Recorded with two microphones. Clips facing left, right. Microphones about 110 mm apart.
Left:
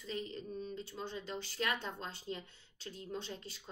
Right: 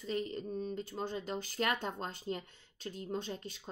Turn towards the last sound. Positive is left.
turn(degrees=-40)  # may be behind; listen again after turning